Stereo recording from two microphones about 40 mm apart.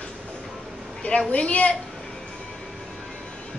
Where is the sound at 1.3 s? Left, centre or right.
Left.